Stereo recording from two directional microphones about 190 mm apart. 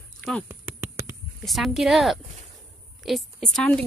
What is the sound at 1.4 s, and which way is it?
A woman's voice, centre (ahead or behind).